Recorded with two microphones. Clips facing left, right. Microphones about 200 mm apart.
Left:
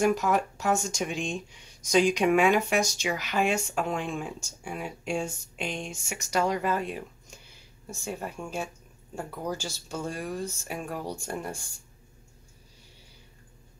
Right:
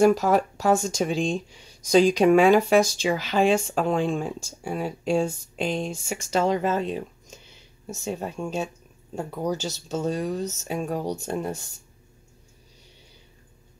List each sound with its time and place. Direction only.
0.0 s speech: 30° right (ahead or behind)